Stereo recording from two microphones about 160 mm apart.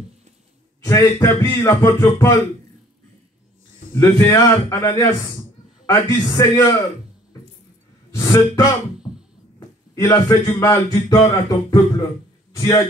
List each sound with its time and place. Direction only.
0.8 s speech: 20° left (ahead or behind)
3.9 s speech: 15° left (ahead or behind)
8.1 s a sound: 20° left (ahead or behind)
9.9 s a man's voice: 20° left (ahead or behind)